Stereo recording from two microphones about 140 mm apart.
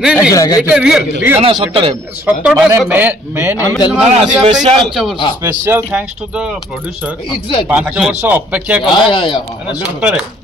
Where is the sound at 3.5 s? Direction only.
25° left (ahead or behind).